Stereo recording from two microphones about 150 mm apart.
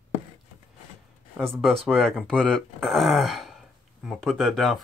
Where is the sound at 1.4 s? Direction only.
Centre (ahead or behind).